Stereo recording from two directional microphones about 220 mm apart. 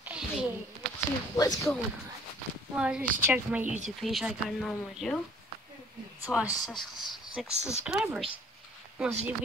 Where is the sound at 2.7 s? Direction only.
5° right (ahead or behind).